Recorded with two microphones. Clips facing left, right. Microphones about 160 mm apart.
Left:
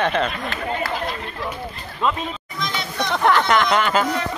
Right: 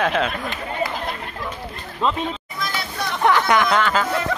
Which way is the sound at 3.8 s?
20° left (ahead or behind).